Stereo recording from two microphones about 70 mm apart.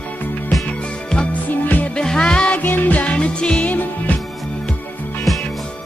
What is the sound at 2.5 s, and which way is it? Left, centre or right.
Music, left.